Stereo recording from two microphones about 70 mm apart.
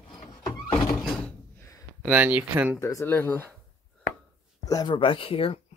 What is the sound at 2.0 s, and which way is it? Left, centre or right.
Speech, right.